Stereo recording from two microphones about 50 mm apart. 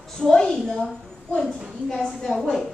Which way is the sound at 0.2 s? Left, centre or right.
Centre.